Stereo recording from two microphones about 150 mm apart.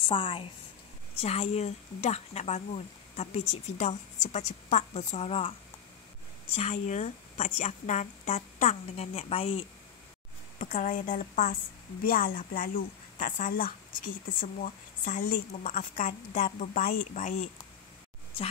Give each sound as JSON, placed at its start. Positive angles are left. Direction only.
{"t": 0.0, "sound": "a woman's voice", "side_deg": 35}
{"t": 6.5, "sound": "speech", "side_deg": 45}
{"t": 10.6, "sound": "a woman's voice", "side_deg": 60}
{"t": 14.4, "sound": "a woman's voice", "side_deg": 60}